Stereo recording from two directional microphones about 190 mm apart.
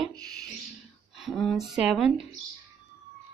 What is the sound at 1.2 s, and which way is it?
Speech, centre (ahead or behind).